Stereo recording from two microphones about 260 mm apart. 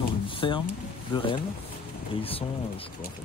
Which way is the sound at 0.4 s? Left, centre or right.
Centre.